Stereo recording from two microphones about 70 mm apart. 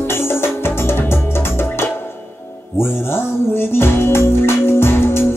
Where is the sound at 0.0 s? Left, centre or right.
Left.